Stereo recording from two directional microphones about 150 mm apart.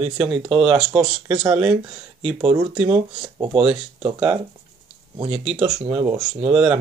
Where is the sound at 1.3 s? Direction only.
30° right (ahead or behind).